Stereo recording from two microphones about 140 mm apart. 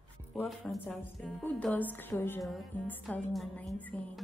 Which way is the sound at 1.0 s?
10° left (ahead or behind).